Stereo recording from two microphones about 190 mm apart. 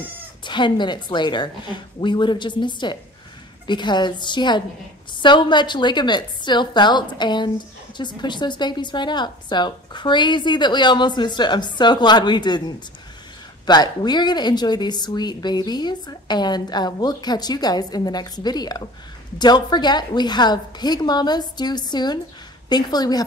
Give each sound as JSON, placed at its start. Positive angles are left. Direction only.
{"t": 0.4, "sound": "a woman's voice", "side_deg": 25}